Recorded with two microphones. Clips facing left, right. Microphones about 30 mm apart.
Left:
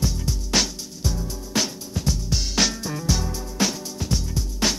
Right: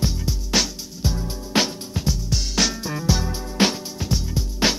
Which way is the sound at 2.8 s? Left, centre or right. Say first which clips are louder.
Right 2 dB; centre.